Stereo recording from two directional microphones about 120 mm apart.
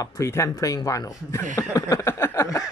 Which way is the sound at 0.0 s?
25° left (ahead or behind).